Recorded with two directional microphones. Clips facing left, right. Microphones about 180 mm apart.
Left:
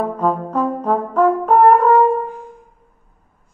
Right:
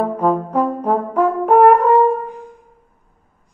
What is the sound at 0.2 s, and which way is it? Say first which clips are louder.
Brass instrument: right 2 dB; 15° right (ahead or behind).